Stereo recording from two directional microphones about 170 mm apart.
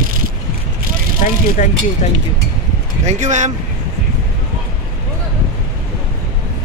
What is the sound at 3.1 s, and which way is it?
Speech, 45° right (ahead or behind).